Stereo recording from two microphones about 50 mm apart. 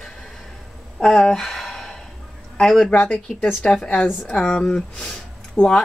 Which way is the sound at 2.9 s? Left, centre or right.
Left.